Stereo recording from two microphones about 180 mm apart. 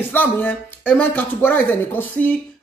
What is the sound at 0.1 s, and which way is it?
Speech, 10° left (ahead or behind).